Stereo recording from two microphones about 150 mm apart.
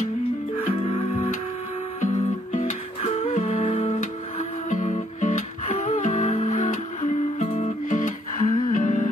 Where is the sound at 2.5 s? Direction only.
45° left (ahead or behind).